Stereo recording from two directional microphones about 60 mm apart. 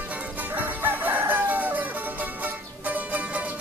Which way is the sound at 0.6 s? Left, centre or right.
Right.